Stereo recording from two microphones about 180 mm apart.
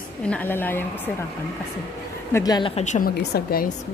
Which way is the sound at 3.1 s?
60° left (ahead or behind).